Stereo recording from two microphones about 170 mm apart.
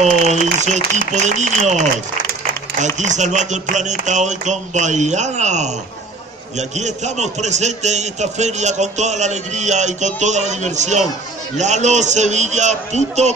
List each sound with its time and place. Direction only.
0.3 s a man's voice: 45° right (ahead or behind)
3.0 s a man's voice: 45° right (ahead or behind)